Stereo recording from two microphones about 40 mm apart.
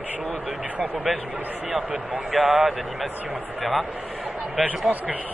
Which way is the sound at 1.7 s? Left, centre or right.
Right.